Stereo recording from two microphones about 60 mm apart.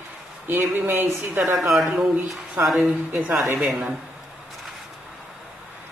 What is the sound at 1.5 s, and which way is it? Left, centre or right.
A man's voice, centre.